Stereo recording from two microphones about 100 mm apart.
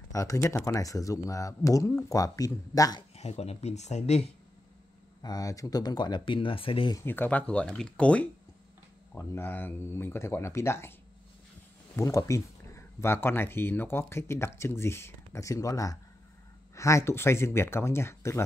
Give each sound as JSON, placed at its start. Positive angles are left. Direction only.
{"t": 0.1, "sound": "speech", "side_deg": 30}
{"t": 3.2, "sound": "speech", "side_deg": 90}
{"t": 5.2, "sound": "speech", "side_deg": 35}
{"t": 7.0, "sound": "speech", "side_deg": 20}
{"t": 9.1, "sound": "speech", "side_deg": 25}